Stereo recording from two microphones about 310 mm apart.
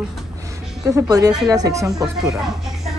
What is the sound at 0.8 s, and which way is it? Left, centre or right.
A woman's voice, centre.